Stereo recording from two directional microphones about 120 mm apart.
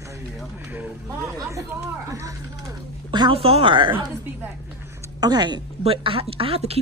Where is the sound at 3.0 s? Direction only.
40° right (ahead or behind).